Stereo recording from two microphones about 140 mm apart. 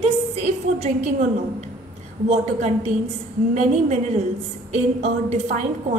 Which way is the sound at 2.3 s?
55° right (ahead or behind).